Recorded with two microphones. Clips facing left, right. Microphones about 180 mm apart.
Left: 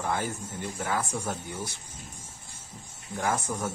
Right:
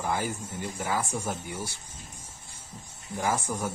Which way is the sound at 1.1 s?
15° right (ahead or behind).